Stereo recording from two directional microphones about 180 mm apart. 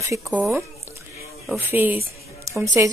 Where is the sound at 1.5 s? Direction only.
10° right (ahead or behind).